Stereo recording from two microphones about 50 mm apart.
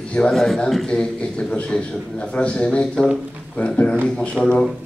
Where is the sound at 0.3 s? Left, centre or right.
Centre.